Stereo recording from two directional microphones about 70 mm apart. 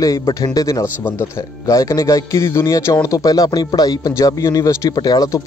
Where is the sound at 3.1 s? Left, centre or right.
Left.